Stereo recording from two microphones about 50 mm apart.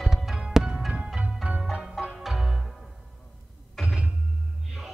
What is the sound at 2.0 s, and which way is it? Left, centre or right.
Music, centre.